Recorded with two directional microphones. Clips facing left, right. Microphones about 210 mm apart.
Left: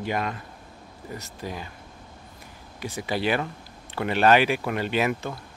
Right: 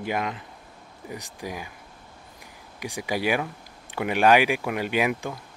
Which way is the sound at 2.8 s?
15° right (ahead or behind).